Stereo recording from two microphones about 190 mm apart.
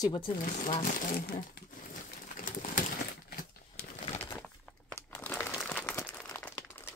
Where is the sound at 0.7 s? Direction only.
40° left (ahead or behind).